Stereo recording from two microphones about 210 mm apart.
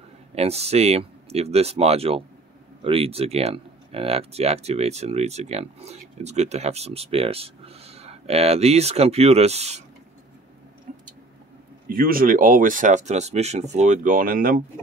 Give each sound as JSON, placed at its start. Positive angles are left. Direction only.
{"t": 0.3, "sound": "speech", "side_deg": -30}
{"t": 10.9, "sound": "vehicle", "side_deg": -40}
{"t": 11.9, "sound": "speech", "side_deg": -45}